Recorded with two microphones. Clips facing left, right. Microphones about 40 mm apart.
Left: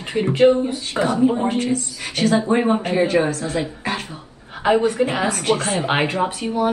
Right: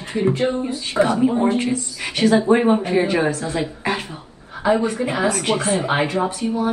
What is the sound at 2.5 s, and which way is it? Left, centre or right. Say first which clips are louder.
Speech: right 4 dB; right.